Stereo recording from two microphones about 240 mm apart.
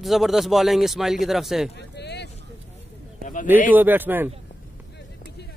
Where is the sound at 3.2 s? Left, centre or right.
Left.